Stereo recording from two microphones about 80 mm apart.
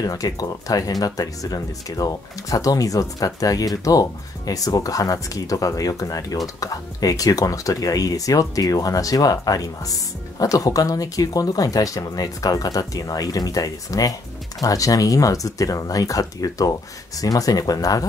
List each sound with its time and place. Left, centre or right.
0.0 s speech: left